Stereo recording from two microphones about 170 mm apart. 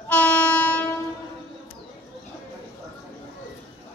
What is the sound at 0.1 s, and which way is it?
Train, 10° left (ahead or behind).